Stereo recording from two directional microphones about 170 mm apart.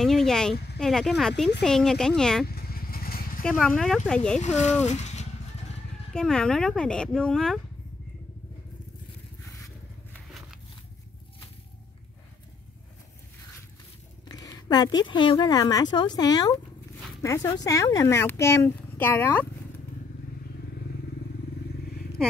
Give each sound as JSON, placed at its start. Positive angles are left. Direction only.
{"t": 0.0, "sound": "a sound", "side_deg": 0}
{"t": 0.7, "sound": "speech", "side_deg": 5}
{"t": 2.4, "sound": "vehicle", "side_deg": 65}
{"t": 3.4, "sound": "speech", "side_deg": 5}
{"t": 4.4, "sound": "speech", "side_deg": 40}
{"t": 6.1, "sound": "speech", "side_deg": 5}
{"t": 14.3, "sound": "a woman's voice", "side_deg": 20}